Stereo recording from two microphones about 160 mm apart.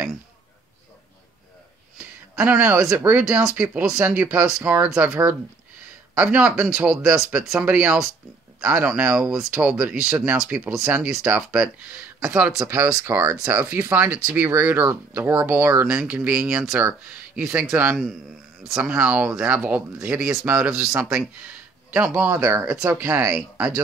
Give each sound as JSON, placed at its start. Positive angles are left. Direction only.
{"t": 2.0, "sound": "speech", "side_deg": -10}
{"t": 12.5, "sound": "speech", "side_deg": -20}